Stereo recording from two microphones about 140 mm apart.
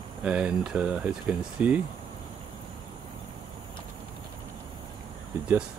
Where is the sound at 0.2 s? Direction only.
5° right (ahead or behind).